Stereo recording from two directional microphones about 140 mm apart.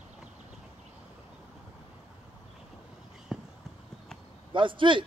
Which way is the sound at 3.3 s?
5° right (ahead or behind).